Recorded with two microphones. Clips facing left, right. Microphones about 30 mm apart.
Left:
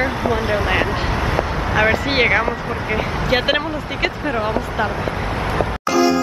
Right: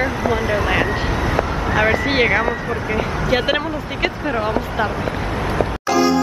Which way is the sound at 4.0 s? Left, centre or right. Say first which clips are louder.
Even; centre.